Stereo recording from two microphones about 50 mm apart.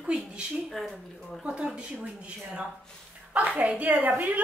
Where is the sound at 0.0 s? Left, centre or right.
Centre.